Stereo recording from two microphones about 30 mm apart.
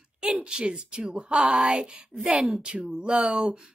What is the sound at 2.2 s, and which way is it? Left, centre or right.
A woman's voice, right.